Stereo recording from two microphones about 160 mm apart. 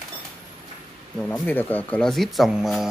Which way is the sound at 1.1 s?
10° left (ahead or behind).